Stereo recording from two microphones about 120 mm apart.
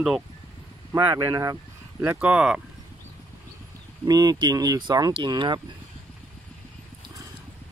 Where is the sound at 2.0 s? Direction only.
15° right (ahead or behind).